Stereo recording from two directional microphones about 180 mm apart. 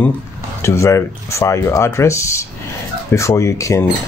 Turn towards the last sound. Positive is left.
turn(degrees=15)  # may be behind; listen again after turning